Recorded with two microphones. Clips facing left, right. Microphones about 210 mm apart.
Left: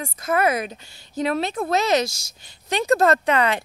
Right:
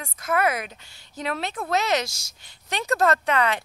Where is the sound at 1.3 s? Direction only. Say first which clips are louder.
Left 4 dB; 15° left (ahead or behind).